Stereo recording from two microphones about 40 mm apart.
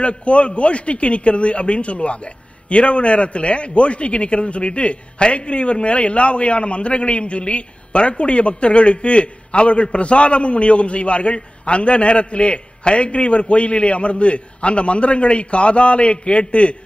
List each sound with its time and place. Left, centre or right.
0.0 s a man's voice: left